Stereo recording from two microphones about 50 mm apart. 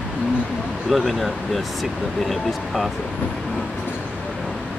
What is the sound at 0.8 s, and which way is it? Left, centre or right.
Speech, centre.